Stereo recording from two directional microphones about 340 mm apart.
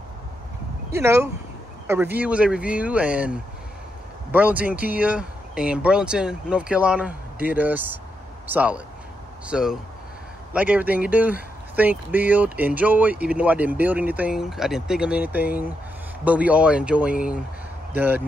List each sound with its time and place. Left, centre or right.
0.9 s speech: centre